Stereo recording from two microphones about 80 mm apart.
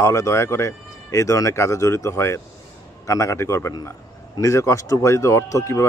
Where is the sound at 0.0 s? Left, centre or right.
Left.